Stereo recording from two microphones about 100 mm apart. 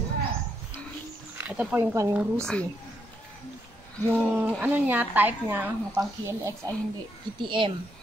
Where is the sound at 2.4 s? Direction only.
10° left (ahead or behind).